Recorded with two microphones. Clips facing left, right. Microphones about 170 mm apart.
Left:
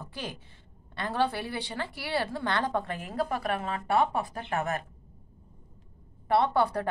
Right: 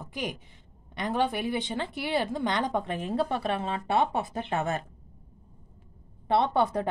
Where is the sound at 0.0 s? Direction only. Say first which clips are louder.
Right 4 dB; 15° right (ahead or behind).